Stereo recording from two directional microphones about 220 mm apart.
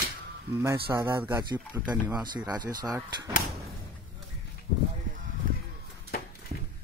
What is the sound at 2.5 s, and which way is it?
Speech, 20° right (ahead or behind).